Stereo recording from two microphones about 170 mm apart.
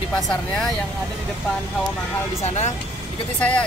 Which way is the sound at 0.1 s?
5° left (ahead or behind).